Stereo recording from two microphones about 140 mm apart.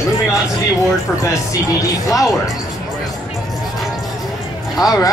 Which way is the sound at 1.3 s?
25° left (ahead or behind).